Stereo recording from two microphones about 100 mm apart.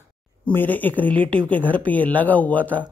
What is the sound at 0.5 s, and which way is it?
Speech, 20° left (ahead or behind).